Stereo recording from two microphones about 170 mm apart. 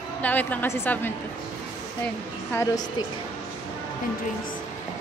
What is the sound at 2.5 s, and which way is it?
Speech, 20° left (ahead or behind).